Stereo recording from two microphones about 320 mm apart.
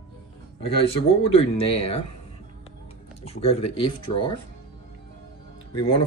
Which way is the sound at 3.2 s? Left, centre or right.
Centre.